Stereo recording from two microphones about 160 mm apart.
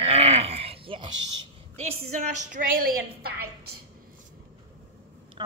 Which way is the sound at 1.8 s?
40° right (ahead or behind).